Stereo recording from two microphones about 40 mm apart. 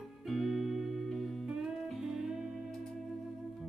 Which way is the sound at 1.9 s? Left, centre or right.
Centre.